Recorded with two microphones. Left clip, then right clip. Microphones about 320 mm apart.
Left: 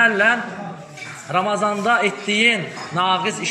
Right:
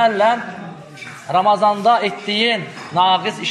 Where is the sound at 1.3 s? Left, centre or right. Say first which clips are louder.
Right 6 dB; centre.